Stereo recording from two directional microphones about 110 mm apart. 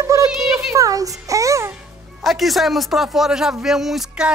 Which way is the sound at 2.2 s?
Centre (ahead or behind).